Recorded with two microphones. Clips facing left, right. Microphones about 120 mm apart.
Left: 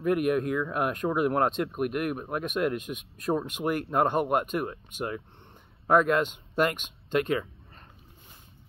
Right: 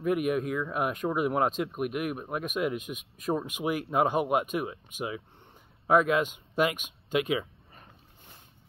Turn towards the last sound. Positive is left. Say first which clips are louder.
# left 1 dB
turn(degrees=-10)  # may be behind; listen again after turning